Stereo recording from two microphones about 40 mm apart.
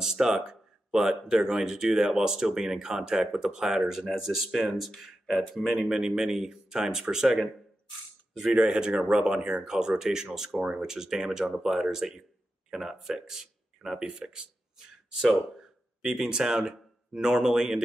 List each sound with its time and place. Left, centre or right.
0.0 s speech: centre
5.9 s speech: centre
8.5 s speech: centre
16.2 s speech: centre